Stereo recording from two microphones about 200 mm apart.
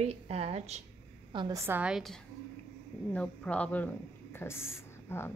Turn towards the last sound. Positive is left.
turn(degrees=10)  # may be behind; listen again after turning